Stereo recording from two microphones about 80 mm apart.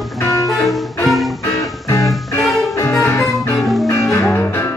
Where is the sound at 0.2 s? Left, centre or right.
Left.